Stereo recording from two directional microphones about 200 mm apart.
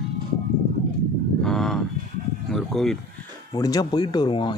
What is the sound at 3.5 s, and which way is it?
Speech, 20° left (ahead or behind).